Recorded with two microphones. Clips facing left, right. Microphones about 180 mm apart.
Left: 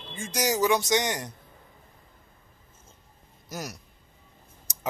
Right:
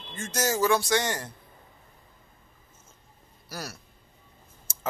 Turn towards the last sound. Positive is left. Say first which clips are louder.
# left 1 dB
turn(degrees=15)  # may be behind; listen again after turning